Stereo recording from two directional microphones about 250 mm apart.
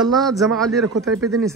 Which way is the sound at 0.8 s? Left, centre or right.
Right.